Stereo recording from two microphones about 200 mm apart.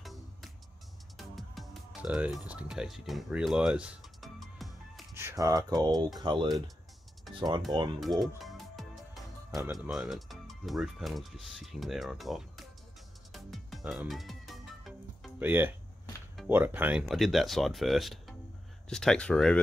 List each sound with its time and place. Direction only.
0.0 s music: centre (ahead or behind)
5.1 s speech: 15° right (ahead or behind)
8.2 s music: centre (ahead or behind)
9.7 s speech: centre (ahead or behind)
13.3 s music: centre (ahead or behind)
15.3 s speech: 10° right (ahead or behind)